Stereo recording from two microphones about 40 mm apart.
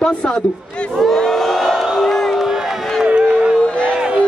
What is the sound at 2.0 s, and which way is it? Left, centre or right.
Crowd, centre.